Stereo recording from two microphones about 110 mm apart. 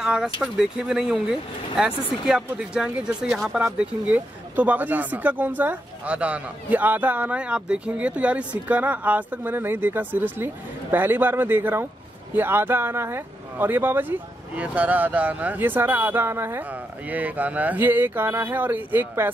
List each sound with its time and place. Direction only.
0.0 s speech: 5° right (ahead or behind)